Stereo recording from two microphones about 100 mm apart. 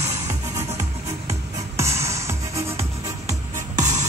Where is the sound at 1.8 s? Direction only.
30° right (ahead or behind).